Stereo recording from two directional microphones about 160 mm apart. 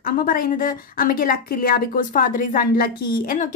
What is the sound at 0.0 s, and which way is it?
A woman's voice, 60° left (ahead or behind).